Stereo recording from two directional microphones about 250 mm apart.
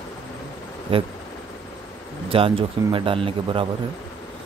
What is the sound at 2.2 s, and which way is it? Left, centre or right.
Speech, right.